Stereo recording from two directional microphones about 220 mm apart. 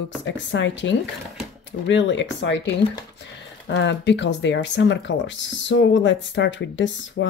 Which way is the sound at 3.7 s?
55° left (ahead or behind).